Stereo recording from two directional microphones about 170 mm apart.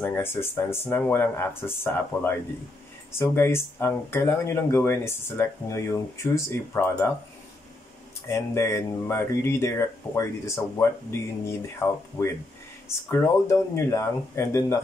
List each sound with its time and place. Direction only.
0.0 s speech: 10° left (ahead or behind)
8.3 s speech: 15° left (ahead or behind)